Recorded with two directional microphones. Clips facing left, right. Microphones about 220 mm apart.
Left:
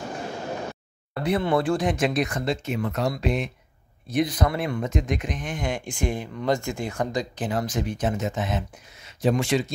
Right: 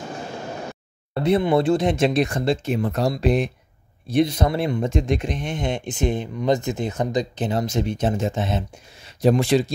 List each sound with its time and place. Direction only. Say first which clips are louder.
1.1 s speech: right 4 dB; 25° right (ahead or behind)